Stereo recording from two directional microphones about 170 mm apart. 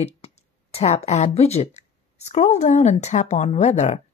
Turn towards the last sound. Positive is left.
turn(degrees=40)  # may be behind; listen again after turning